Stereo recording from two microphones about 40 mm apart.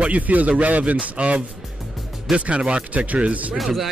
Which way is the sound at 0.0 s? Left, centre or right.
Right.